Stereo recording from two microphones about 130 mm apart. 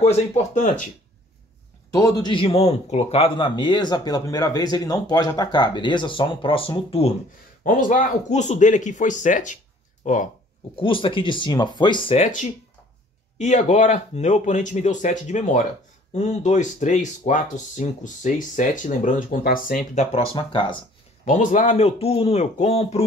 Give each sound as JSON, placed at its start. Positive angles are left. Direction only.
{"t": 0.0, "sound": "speech", "side_deg": 55}
{"t": 1.9, "sound": "a man's voice", "side_deg": 25}
{"t": 2.3, "sound": "speech", "side_deg": 45}
{"t": 7.6, "sound": "speech", "side_deg": 85}
{"t": 10.8, "sound": "speech", "side_deg": 40}
{"t": 12.2, "sound": "speech", "side_deg": 70}
{"t": 20.3, "sound": "speech", "side_deg": 40}
{"t": 21.3, "sound": "speech", "side_deg": 70}